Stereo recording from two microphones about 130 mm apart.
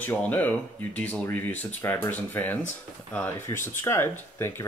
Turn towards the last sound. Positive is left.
turn(degrees=20)  # may be behind; listen again after turning